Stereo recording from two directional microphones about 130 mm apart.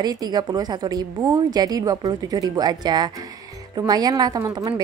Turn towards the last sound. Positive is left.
turn(degrees=-30)  # may be behind; listen again after turning